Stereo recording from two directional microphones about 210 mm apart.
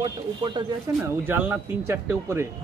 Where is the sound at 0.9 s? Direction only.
10° right (ahead or behind).